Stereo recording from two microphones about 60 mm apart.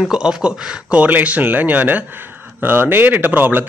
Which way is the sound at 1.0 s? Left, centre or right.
Right.